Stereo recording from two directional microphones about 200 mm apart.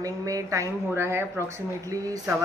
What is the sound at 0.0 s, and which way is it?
Speech, 15° right (ahead or behind).